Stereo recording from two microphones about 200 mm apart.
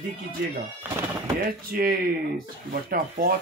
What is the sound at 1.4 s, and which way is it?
Speech, 45° right (ahead or behind).